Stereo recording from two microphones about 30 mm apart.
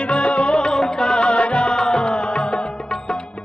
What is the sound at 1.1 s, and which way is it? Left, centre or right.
Music, left.